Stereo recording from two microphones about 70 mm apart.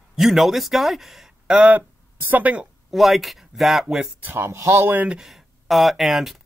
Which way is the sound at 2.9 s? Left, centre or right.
Centre.